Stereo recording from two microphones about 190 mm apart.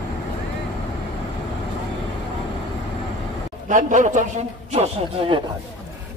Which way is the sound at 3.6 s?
40° right (ahead or behind).